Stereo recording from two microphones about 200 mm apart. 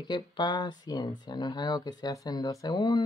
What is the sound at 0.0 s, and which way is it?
Speech, 20° left (ahead or behind).